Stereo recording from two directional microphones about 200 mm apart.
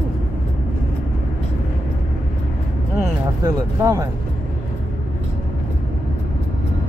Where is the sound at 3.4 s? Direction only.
15° right (ahead or behind).